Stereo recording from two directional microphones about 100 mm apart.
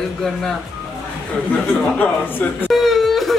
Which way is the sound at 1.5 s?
20° left (ahead or behind).